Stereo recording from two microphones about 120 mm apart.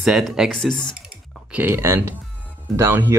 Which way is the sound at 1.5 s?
15° right (ahead or behind).